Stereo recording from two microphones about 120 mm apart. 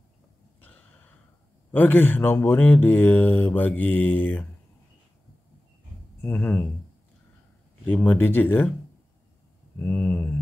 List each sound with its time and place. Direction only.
0.6 s snort: 15° left (ahead or behind)
1.7 s speech: 15° left (ahead or behind)
6.2 s speech: 15° left (ahead or behind)
7.8 s speech: 15° left (ahead or behind)
9.8 s speech: 15° left (ahead or behind)